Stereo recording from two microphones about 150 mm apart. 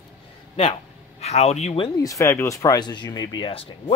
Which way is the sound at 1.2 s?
45° left (ahead or behind).